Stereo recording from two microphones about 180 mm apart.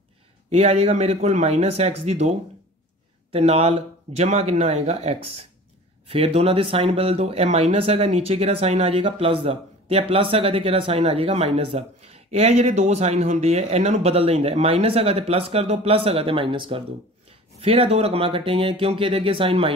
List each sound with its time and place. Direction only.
0.5 s speech: 35° right (ahead or behind)